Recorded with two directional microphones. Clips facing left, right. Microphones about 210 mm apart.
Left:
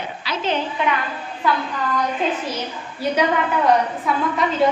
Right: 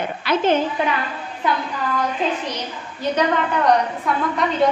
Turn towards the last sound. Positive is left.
turn(degrees=0)  # may be behind; listen again after turning